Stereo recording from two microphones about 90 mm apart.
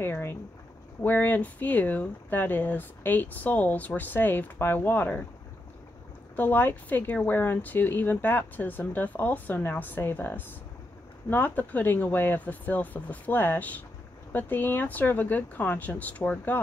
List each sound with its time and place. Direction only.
0.0 s speech: 25° left (ahead or behind)
6.3 s speech: 20° left (ahead or behind)